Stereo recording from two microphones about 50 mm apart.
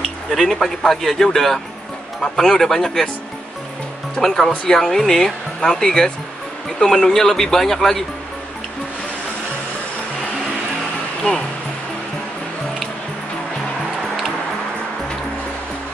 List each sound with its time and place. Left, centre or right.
0.3 s a man's voice: centre
4.2 s speech: centre
11.3 s speech: left